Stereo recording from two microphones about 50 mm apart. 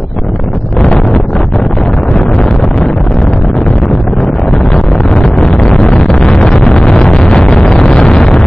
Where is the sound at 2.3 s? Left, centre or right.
Centre.